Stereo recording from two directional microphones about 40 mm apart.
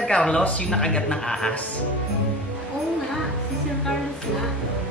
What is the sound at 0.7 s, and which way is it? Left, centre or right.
Speech, centre.